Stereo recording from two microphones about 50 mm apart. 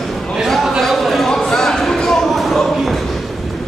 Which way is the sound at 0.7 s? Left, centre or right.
Centre.